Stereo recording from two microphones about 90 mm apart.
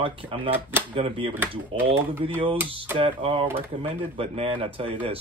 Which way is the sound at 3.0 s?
90° right.